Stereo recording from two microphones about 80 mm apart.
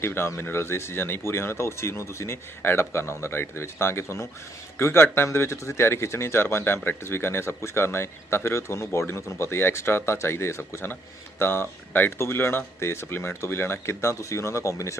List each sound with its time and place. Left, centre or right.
0.0 s speech: left